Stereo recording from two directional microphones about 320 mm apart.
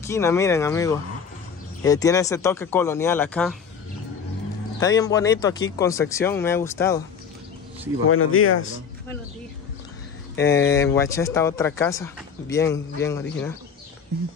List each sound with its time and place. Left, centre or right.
0.0 s speech: centre
4.7 s speech: centre
8.1 s speech: left
10.3 s speech: centre